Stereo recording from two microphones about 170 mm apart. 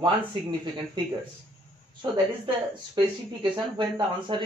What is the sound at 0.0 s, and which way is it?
A man's voice, 25° right (ahead or behind).